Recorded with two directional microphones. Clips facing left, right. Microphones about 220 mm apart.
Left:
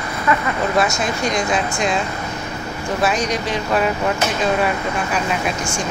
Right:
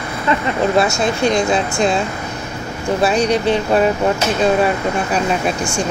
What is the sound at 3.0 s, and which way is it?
Speech, 30° right (ahead or behind).